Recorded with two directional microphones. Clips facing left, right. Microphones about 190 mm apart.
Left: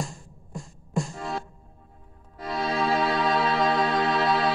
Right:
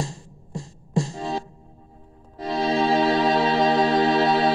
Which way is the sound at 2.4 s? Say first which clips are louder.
Right 5 dB; 25° right (ahead or behind).